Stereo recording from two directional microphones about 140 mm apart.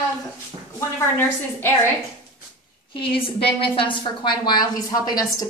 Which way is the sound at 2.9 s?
40° left (ahead or behind).